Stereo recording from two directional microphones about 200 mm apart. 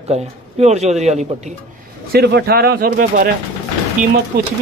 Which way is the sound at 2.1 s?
50° right (ahead or behind).